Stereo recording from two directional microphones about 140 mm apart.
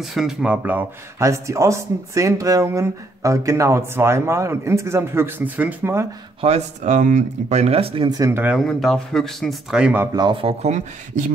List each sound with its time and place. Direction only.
0.0 s speech: centre (ahead or behind)
6.4 s speech: 55° right (ahead or behind); by 8.2 s 35° right (ahead or behind)
8.2 s speech: 15° right (ahead or behind)
8.5 s speech: 5° left (ahead or behind)
10.1 s speech: 35° right (ahead or behind)
10.6 s speech: 55° right (ahead or behind)